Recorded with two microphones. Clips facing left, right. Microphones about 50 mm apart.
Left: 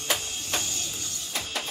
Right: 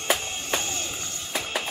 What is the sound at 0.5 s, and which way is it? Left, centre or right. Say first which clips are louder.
Music: right 3 dB; right.